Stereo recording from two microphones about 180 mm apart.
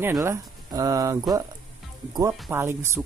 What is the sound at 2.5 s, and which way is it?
Speech, 15° right (ahead or behind).